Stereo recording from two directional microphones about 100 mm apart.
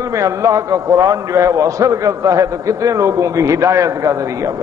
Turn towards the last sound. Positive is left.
turn(degrees=-35)  # may be behind; listen again after turning